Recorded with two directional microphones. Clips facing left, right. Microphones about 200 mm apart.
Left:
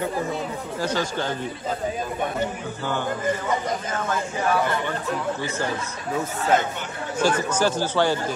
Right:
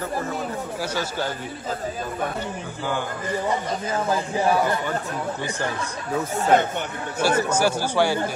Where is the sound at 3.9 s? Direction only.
30° right (ahead or behind).